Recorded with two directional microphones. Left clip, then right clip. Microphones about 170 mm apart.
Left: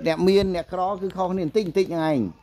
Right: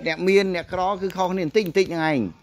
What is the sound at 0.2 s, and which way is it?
Speech, 10° left (ahead or behind).